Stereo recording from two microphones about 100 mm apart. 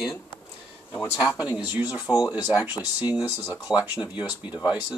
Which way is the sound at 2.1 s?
40° left (ahead or behind).